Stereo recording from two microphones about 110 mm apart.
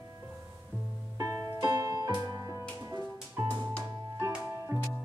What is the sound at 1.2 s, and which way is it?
Music, 30° right (ahead or behind).